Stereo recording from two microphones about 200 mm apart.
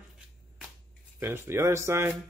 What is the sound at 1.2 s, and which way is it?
Speech, 10° right (ahead or behind).